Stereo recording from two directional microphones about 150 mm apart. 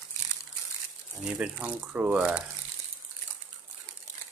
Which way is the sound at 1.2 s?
5° right (ahead or behind).